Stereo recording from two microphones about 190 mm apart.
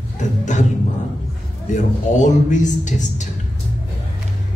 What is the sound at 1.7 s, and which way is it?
A woman's voice, 40° left (ahead or behind).